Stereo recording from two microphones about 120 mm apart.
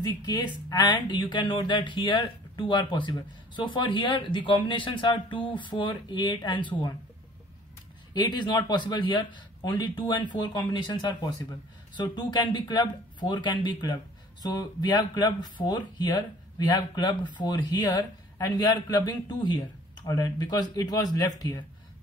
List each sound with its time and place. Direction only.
0.1 s speech: 35° left (ahead or behind)
8.1 s speech: 35° left (ahead or behind)